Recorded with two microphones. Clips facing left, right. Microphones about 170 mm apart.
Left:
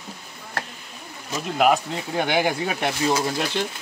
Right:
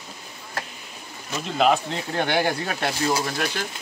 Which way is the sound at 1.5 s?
5° left (ahead or behind).